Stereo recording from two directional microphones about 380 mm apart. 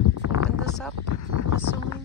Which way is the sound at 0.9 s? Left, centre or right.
Left.